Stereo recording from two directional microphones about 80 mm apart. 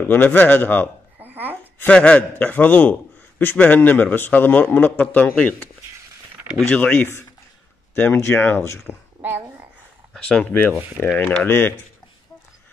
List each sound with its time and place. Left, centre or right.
0.0 s a man's voice: left
1.2 s a sound: right
1.9 s a man's voice: centre; by 8.9 s left
10.1 s a man's voice: centre; by 11.7 s left